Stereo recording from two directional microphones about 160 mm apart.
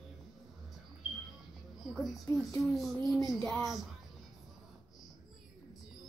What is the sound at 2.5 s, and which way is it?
Speech, centre (ahead or behind).